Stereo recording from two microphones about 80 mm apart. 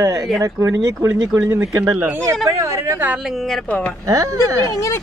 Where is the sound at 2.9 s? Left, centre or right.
Right.